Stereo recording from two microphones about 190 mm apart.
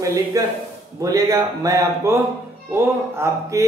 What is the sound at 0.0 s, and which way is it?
Speech, 15° right (ahead or behind).